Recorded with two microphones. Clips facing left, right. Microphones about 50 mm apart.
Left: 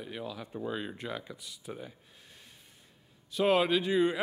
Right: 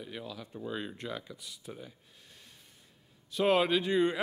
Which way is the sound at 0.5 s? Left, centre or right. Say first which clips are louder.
Left 4 dB; left.